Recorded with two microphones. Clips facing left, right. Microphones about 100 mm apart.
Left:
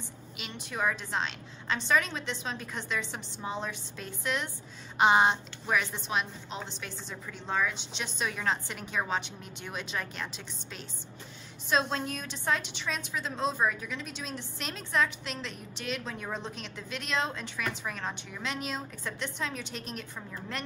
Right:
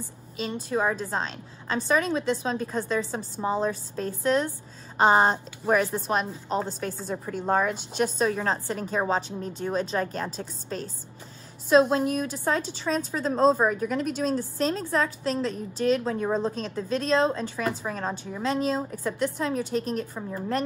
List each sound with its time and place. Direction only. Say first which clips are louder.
0.7 s a woman's voice: right 4 dB; 35° right (ahead or behind)
12.1 s a woman's voice: right 6 dB; 30° right (ahead or behind)